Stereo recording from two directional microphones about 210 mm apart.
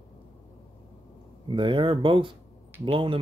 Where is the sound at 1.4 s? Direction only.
25° right (ahead or behind).